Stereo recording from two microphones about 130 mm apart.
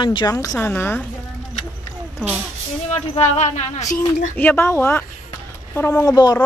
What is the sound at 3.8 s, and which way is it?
Speech, 25° left (ahead or behind).